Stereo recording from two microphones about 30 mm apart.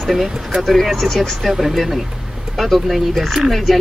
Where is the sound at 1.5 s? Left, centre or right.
Centre.